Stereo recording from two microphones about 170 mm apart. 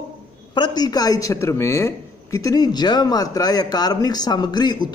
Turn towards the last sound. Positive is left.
turn(degrees=25)  # may be behind; listen again after turning